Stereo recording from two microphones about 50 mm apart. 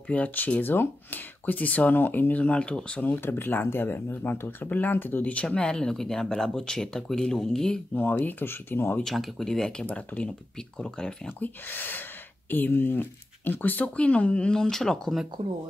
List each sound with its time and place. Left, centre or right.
0.1 s speech: left
2.4 s speech: left
3.1 s speech: left
5.3 s speech: left
7.9 s speech: left
9.0 s speech: centre
9.5 s speech: centre
9.8 s speech: left
10.8 s speech: centre
11.3 s speech: left
14.6 s speech: centre